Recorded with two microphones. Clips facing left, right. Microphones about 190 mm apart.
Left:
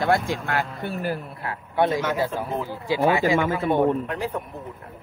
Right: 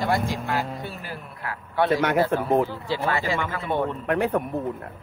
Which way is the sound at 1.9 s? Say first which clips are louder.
Right 3 dB; 65° right (ahead or behind).